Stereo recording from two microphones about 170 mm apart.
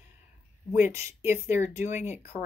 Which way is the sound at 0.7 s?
10° right (ahead or behind).